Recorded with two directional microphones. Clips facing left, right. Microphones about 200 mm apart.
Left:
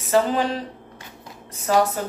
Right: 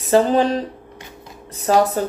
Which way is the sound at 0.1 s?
35° right (ahead or behind).